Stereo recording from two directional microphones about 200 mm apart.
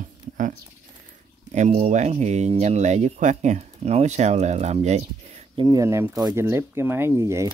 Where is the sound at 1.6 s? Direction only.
35° right (ahead or behind).